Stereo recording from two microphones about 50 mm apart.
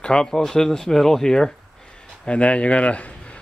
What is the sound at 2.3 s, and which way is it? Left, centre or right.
A man's voice, left.